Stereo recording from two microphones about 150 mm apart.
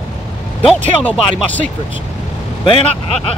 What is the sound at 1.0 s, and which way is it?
Speech, 10° left (ahead or behind).